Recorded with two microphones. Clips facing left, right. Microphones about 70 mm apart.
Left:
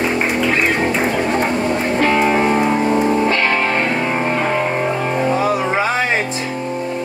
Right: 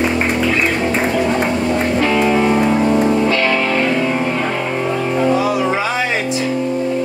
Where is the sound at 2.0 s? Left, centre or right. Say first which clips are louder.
Left 1 dB; left.